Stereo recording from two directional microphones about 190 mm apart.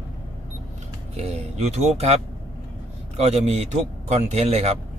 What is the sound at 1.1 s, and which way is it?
Speech, 35° right (ahead or behind).